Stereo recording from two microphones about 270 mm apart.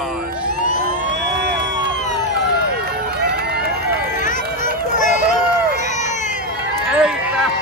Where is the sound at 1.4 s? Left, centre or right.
Right.